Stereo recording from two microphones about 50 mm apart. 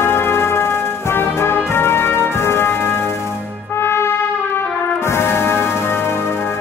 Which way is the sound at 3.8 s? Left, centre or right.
Left.